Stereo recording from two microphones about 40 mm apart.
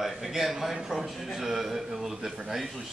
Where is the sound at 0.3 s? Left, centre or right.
Centre.